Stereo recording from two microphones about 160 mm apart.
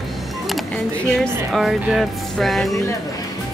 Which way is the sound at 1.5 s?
Centre (ahead or behind).